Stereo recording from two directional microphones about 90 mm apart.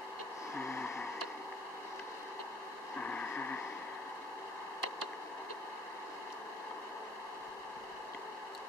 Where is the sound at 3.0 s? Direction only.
15° left (ahead or behind).